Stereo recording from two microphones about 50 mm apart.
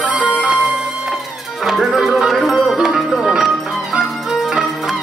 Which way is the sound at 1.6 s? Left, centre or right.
Centre.